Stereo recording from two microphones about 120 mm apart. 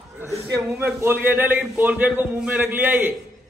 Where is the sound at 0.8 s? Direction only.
15° right (ahead or behind).